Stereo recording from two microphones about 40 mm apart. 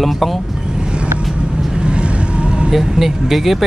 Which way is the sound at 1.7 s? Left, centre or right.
Right.